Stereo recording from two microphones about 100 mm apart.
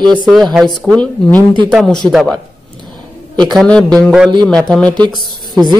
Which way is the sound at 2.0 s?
45° right (ahead or behind).